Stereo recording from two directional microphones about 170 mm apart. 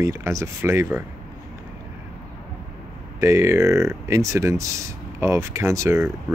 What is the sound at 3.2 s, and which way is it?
Speech, 15° right (ahead or behind).